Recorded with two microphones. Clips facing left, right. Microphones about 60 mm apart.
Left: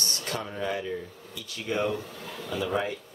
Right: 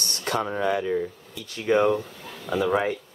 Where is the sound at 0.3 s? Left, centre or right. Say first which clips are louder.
Right 8 dB; right.